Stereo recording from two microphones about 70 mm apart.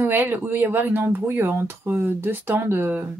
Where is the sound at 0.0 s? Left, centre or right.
Right.